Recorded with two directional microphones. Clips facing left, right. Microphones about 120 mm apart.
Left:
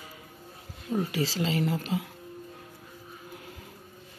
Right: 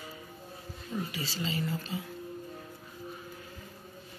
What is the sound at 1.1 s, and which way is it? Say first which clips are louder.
Speech: left 7 dB; 85° left.